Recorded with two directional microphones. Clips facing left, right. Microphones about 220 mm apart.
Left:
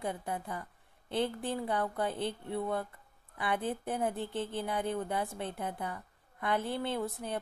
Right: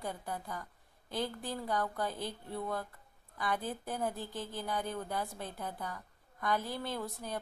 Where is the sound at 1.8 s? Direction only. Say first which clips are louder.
Left 3 dB; 25° left (ahead or behind).